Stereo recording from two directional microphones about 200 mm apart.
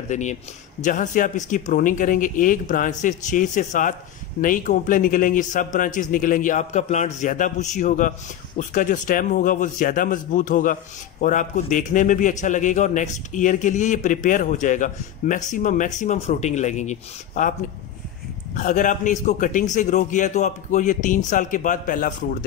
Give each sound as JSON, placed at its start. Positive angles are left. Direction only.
{"t": 0.1, "sound": "a man's voice", "side_deg": 35}